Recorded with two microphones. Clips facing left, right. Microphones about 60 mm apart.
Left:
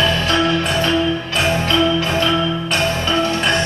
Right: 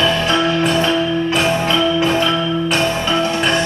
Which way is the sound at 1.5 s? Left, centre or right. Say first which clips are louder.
Even; centre.